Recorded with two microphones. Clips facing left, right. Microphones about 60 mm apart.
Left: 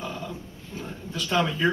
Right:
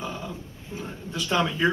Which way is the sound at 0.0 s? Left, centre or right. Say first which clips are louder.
Even; centre.